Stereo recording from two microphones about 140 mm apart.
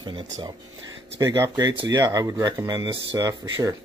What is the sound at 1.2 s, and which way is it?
Speech, 25° right (ahead or behind).